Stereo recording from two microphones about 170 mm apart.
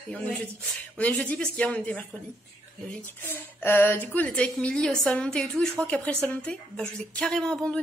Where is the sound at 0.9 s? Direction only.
10° left (ahead or behind).